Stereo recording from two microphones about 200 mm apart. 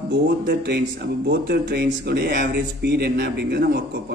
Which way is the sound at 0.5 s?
55° right (ahead or behind).